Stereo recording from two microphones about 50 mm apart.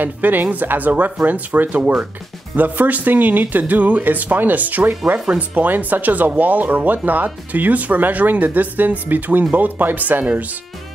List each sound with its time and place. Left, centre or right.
0.0 s speech: right